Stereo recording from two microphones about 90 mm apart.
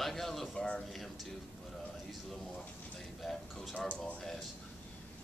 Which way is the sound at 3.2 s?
Centre (ahead or behind).